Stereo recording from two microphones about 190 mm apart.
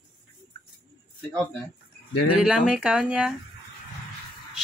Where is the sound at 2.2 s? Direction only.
5° right (ahead or behind).